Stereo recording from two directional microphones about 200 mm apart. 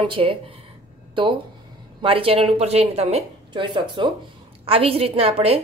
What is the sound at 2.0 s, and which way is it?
A woman's voice, 25° right (ahead or behind).